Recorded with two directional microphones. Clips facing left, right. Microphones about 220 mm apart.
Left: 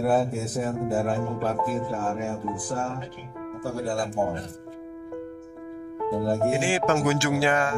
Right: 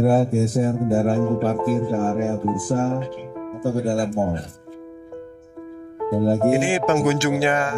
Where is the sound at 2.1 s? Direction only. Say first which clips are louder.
Right 8 dB; 45° right (ahead or behind).